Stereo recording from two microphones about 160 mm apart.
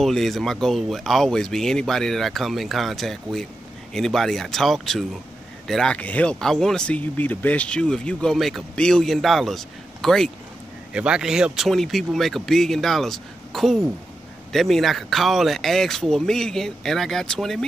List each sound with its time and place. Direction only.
0.0 s speech: centre (ahead or behind)